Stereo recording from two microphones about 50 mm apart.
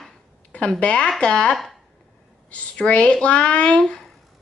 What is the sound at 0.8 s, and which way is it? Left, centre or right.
Speech, left.